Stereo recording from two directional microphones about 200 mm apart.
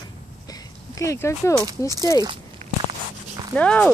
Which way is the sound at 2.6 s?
35° right (ahead or behind).